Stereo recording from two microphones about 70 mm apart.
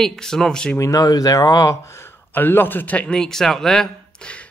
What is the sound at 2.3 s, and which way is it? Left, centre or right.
A man's voice, left.